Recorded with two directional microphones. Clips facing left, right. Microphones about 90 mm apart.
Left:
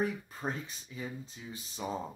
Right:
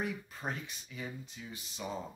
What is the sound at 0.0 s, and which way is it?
Speech, 35° left (ahead or behind).